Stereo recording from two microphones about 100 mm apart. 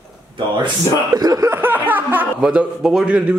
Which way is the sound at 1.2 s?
40° right (ahead or behind).